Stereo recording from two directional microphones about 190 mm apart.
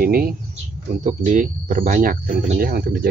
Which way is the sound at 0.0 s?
50° right (ahead or behind).